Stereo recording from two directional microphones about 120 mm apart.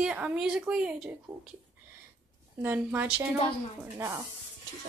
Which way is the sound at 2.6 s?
15° right (ahead or behind).